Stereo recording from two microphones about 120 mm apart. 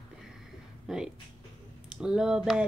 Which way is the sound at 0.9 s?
5° right (ahead or behind).